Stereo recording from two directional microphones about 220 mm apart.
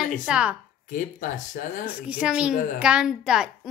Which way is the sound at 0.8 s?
35° left (ahead or behind).